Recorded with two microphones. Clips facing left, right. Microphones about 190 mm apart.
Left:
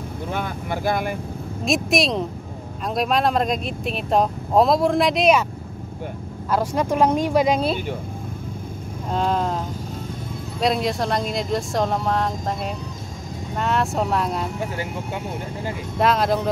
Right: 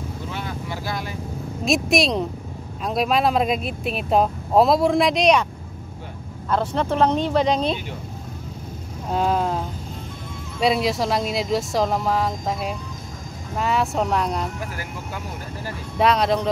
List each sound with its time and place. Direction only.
0.3 s vehicle: 55° left (ahead or behind)
1.6 s speech: centre (ahead or behind)
6.5 s speech: 10° left (ahead or behind)
9.1 s speech: 5° right (ahead or behind)
10.6 s speech: centre (ahead or behind)
16.0 s speech: centre (ahead or behind)